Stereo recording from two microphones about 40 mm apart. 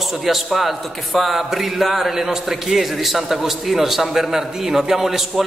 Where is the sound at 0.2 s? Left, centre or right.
Centre.